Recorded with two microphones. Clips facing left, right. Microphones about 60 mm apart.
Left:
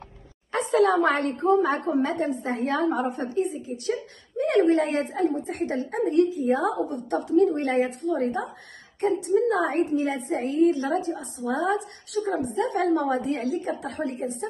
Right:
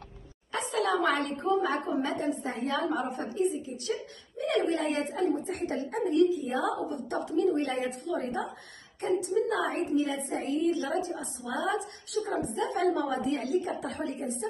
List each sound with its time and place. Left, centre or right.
0.5 s a woman's voice: left